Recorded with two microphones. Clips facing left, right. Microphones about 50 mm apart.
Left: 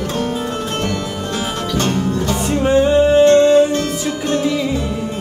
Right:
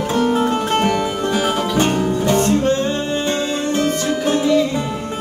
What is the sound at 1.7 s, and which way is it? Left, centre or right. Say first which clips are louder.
Music: left 2 dB; centre.